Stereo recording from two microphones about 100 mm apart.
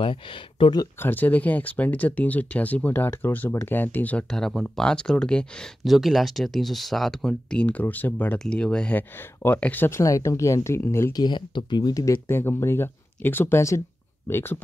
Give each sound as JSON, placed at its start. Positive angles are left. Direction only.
{"t": 0.0, "sound": "speech", "side_deg": 60}
{"t": 1.0, "sound": "speech", "side_deg": 15}
{"t": 4.3, "sound": "speech", "side_deg": 5}
{"t": 7.6, "sound": "speech", "side_deg": 15}
{"t": 11.1, "sound": "speech", "side_deg": 50}